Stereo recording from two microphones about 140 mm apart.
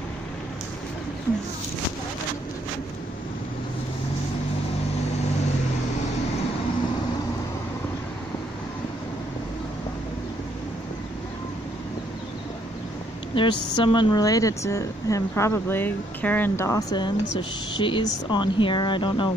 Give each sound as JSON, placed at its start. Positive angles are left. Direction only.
{"t": 13.3, "sound": "speech", "side_deg": 40}